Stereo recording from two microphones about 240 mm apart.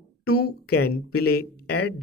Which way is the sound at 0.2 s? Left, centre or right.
Left.